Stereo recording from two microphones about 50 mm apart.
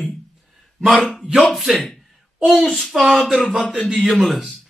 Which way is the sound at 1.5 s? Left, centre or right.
Centre.